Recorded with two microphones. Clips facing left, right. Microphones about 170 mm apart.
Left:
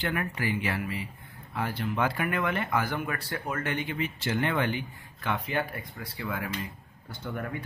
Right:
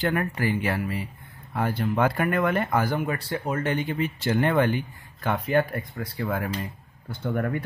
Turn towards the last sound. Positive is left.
turn(degrees=-50)  # may be behind; listen again after turning